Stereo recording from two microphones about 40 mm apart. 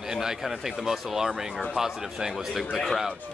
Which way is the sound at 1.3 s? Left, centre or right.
Centre.